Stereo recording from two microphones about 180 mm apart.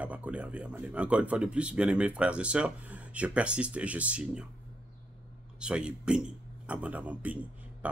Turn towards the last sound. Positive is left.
turn(degrees=-10)  # may be behind; listen again after turning